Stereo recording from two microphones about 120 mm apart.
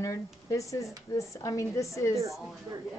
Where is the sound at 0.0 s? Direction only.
25° left (ahead or behind).